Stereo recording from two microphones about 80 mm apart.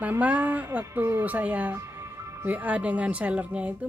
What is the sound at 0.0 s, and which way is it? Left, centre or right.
Speech, right.